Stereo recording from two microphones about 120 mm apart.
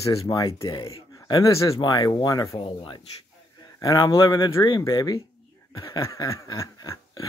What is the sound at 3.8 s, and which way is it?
Speech, 30° left (ahead or behind).